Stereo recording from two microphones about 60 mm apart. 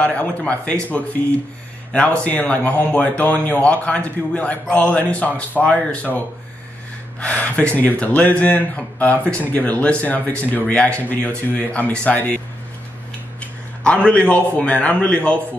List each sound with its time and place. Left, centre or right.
0.0 s speech: centre
7.2 s speech: left
13.4 s a sound: centre
14.3 s speech: centre